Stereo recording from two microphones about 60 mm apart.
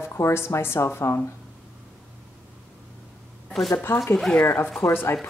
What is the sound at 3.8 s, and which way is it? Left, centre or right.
Speech, left.